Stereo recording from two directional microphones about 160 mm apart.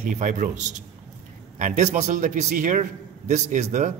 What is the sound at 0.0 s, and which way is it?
A man's voice, 55° right (ahead or behind).